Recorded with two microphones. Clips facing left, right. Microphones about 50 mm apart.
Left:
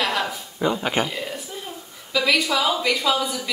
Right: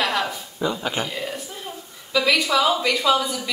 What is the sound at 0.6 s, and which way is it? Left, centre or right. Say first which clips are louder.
Speech: left 2 dB; left.